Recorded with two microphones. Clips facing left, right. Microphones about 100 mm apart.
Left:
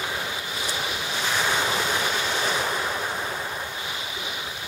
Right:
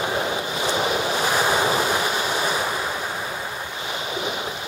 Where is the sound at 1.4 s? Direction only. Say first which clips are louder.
Right 5 dB; 30° right (ahead or behind).